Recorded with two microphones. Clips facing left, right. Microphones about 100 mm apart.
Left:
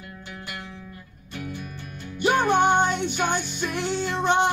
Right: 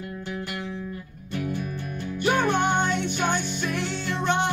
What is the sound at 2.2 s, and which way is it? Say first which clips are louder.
Music: left 3 dB; 15° left (ahead or behind).